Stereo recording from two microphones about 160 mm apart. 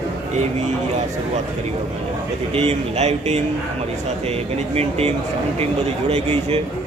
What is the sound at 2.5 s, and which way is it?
Speech, 40° right (ahead or behind).